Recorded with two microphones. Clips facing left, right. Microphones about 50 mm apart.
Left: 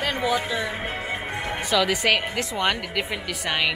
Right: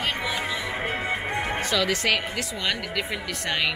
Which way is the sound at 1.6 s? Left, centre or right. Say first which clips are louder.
Left 5 dB; centre.